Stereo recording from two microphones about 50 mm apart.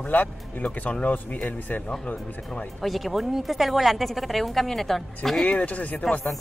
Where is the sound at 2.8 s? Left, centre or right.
Centre.